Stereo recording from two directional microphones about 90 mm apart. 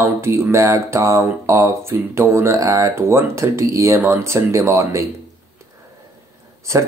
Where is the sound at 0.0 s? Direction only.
30° right (ahead or behind).